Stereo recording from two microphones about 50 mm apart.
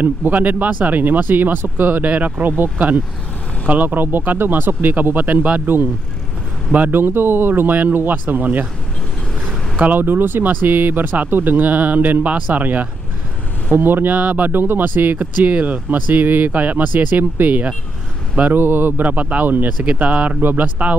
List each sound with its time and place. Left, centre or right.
0.0 s speech: right
6.9 s speech: right
9.8 s speech: right
18.5 s speech: right
19.0 s speech: right